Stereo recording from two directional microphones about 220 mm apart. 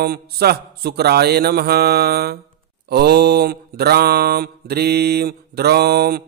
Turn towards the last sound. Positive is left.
turn(degrees=-45)  # may be behind; listen again after turning